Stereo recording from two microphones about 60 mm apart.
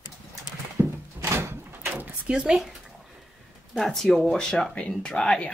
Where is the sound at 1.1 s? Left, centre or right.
Right.